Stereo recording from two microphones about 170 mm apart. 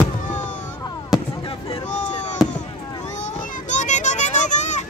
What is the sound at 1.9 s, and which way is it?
Fireworks, 45° left (ahead or behind).